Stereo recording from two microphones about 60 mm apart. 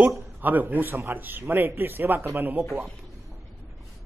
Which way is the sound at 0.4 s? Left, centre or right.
Right.